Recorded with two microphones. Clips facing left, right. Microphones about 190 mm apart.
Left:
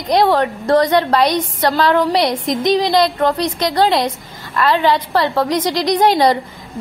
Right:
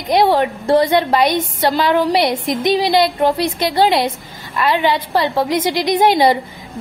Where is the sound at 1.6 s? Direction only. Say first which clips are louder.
Left 1 dB; 20° right (ahead or behind).